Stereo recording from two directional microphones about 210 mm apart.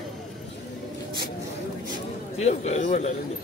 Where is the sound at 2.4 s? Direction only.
30° left (ahead or behind).